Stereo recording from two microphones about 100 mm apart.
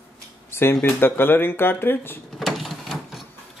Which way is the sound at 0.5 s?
25° left (ahead or behind).